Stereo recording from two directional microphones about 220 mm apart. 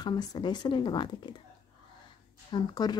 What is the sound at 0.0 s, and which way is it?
Speech, 15° left (ahead or behind).